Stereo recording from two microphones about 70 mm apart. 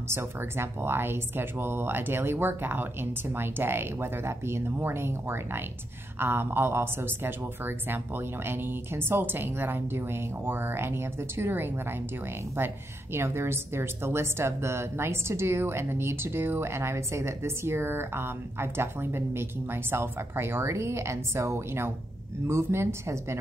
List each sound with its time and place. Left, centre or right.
0.1 s a woman's voice: right